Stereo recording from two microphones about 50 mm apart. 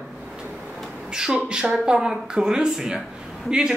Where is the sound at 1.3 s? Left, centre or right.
Right.